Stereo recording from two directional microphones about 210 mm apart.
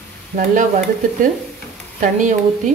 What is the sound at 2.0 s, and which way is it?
Speech, 35° right (ahead or behind).